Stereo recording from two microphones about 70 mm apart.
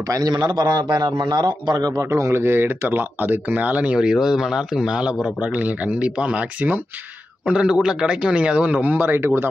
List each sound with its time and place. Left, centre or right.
0.1 s a man's voice: right
4.0 s speech: centre; by 6.8 s right
7.4 s speech: centre
8.9 s speech: right